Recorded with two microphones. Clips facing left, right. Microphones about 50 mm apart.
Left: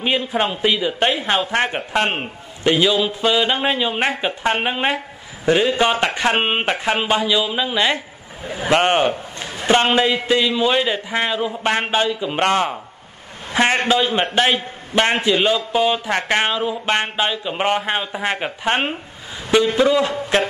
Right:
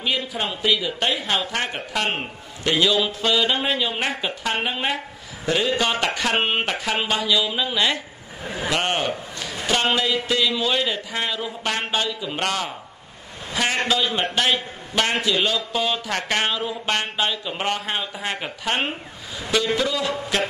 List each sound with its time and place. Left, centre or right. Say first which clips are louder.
0.0 s a man's voice: left 5 dB; left
2.8 s a sound: left 3 dB; centre
3.6 s a man's voice: left 4 dB; left